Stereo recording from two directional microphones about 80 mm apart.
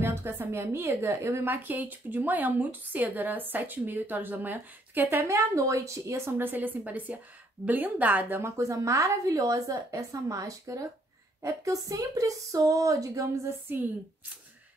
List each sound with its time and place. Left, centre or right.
0.0 s a woman's voice: right
8.4 s a woman's voice: right
13.7 s a woman's voice: right